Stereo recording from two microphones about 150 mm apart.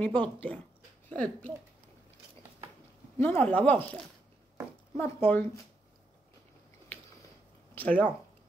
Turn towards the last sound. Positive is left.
turn(degrees=10)  # may be behind; listen again after turning